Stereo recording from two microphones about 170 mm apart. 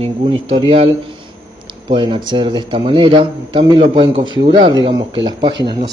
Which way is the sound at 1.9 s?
25° right (ahead or behind).